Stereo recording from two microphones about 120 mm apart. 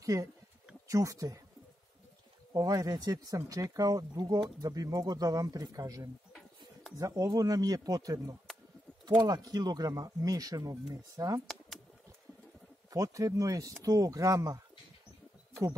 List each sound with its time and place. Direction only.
0.0 s speech: 30° right (ahead or behind)
2.5 s speech: 30° right (ahead or behind)
12.9 s speech: 30° right (ahead or behind)